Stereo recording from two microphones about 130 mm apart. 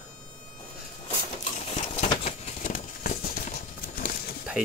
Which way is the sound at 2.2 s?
80° left.